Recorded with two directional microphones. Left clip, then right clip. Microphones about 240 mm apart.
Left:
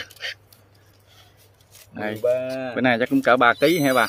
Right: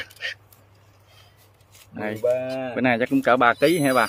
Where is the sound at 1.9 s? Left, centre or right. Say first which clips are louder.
Left 1 dB; centre.